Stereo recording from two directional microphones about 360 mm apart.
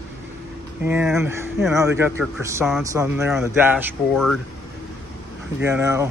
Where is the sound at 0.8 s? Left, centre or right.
Centre.